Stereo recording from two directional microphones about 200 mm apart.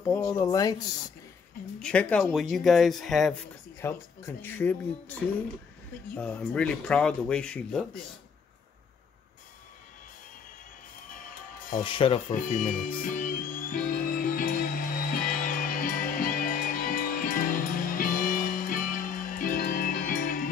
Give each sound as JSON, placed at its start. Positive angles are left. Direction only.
{"t": 0.0, "sound": "speech", "side_deg": 15}
{"t": 1.8, "sound": "speech", "side_deg": 5}
{"t": 3.8, "sound": "speech", "side_deg": 10}
{"t": 6.1, "sound": "speech", "side_deg": 5}
{"t": 11.8, "sound": "rub", "side_deg": 25}
{"t": 12.3, "sound": "music", "side_deg": 40}